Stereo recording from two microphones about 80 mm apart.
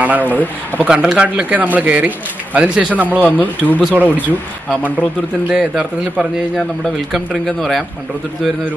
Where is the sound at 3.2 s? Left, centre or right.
Centre.